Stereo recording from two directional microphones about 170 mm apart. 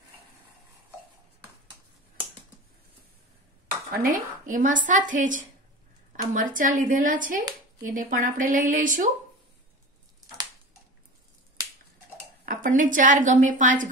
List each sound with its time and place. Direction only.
3.6 s a woman's voice: 55° right (ahead or behind)
12.4 s a woman's voice: 50° right (ahead or behind)